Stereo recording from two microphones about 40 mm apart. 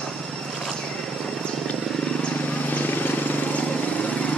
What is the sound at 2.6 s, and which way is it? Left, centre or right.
Vehicle, left.